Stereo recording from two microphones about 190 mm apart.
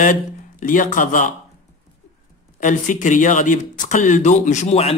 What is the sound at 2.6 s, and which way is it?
Speech, 40° left (ahead or behind).